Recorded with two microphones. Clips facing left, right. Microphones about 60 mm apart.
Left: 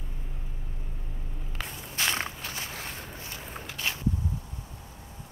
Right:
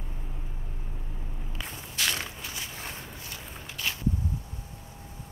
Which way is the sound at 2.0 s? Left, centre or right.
Left.